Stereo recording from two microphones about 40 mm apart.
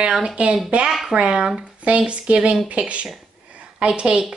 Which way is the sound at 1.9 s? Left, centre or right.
Right.